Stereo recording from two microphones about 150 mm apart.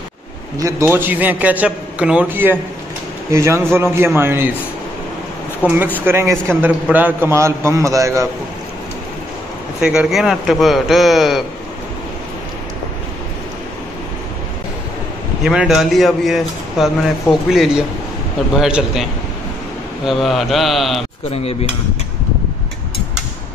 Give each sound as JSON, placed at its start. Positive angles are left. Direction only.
{"t": 0.6, "sound": "a man's voice", "side_deg": -20}
{"t": 5.6, "sound": "speech", "side_deg": 10}
{"t": 6.0, "sound": "a man's voice", "side_deg": -15}
{"t": 9.8, "sound": "speech", "side_deg": -5}
{"t": 15.4, "sound": "speech", "side_deg": -5}
{"t": 20.1, "sound": "speech", "side_deg": 0}
{"t": 21.3, "sound": "speech", "side_deg": 40}